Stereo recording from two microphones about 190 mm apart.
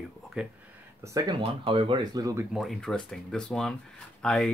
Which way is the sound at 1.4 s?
30° right (ahead or behind).